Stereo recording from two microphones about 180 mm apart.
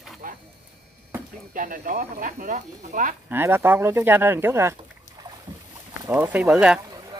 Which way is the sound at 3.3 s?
10° right (ahead or behind).